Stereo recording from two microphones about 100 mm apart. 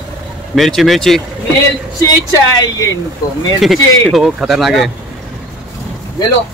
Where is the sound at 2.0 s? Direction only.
35° left (ahead or behind).